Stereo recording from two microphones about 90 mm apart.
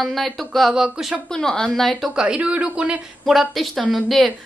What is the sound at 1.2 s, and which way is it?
Speech, 5° left (ahead or behind).